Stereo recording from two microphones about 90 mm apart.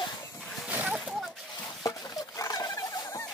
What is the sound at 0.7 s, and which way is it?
Splash, 15° right (ahead or behind).